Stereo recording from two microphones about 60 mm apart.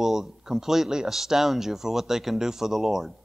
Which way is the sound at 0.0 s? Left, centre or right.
Centre.